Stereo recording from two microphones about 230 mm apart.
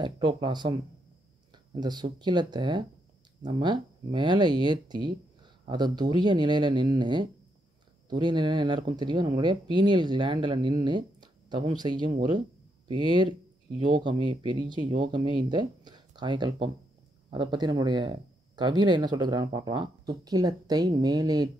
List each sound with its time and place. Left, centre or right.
0.0 s speech: centre